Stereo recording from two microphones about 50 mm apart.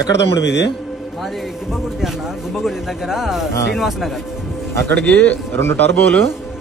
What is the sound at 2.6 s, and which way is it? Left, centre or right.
Speech, centre.